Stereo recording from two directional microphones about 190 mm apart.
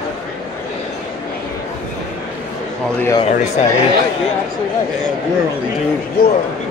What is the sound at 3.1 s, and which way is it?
Speech, 35° left (ahead or behind).